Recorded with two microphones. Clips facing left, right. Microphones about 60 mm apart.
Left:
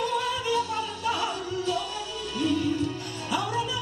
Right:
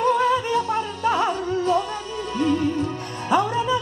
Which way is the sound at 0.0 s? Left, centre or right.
Right.